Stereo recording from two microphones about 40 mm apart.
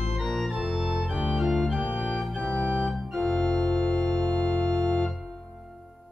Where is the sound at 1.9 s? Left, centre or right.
Centre.